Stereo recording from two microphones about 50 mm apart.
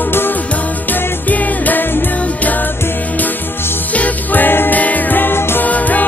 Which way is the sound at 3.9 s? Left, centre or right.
Left.